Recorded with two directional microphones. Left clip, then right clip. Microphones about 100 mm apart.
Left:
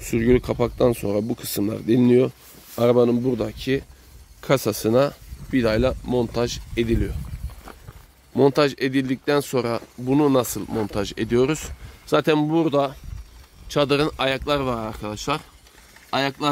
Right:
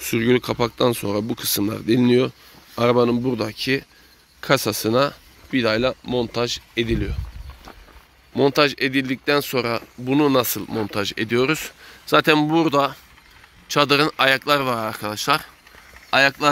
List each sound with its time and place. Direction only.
0.0 s speech: 10° left (ahead or behind)
4.4 s speech: 20° left (ahead or behind)
8.3 s speech: 35° left (ahead or behind)
9.9 s speech: 15° left (ahead or behind)
10.9 s speech: 35° left (ahead or behind)
12.2 s speech: 15° left (ahead or behind)
12.4 s speech: 5° left (ahead or behind)